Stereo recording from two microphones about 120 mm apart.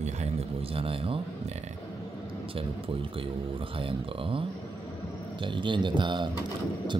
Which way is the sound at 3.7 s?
50° right (ahead or behind).